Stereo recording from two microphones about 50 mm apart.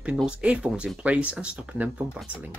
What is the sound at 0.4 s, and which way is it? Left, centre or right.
Speech, right.